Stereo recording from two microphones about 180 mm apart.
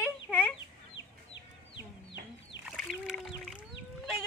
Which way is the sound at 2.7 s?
Centre (ahead or behind).